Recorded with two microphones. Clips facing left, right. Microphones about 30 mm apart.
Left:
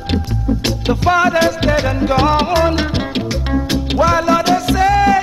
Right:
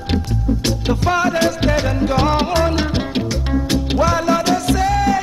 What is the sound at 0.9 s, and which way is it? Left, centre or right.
Music, centre.